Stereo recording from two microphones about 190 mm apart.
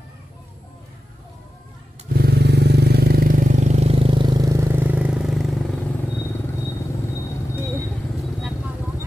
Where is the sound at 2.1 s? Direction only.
55° right (ahead or behind); by 5.6 s centre (ahead or behind).